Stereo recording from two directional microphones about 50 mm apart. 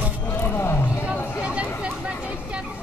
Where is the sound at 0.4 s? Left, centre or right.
Left.